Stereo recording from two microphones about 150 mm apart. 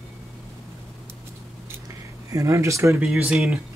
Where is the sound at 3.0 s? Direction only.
5° right (ahead or behind).